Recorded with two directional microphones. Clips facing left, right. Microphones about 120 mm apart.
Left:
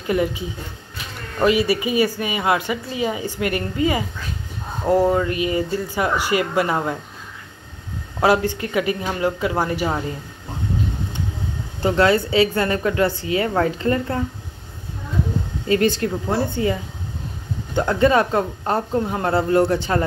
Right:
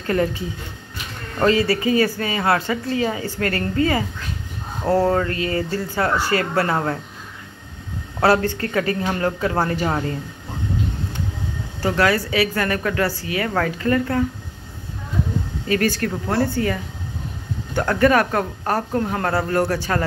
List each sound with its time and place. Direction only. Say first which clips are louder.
0.0 s a woman's voice: even; 10° left (ahead or behind)
1.4 s a woman's voice: even; 15° left (ahead or behind)
8.2 s a woman's voice: even; 15° left (ahead or behind)
11.8 s a woman's voice: left 2 dB; 25° left (ahead or behind)
15.7 s a woman's voice: left 2 dB; 20° left (ahead or behind)